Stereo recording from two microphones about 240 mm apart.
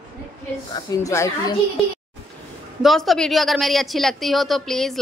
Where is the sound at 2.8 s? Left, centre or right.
Centre.